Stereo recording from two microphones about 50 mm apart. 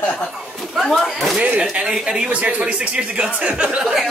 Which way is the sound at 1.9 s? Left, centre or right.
Centre.